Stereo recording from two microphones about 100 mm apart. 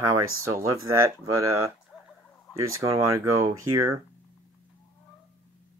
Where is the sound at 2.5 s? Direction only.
35° right (ahead or behind).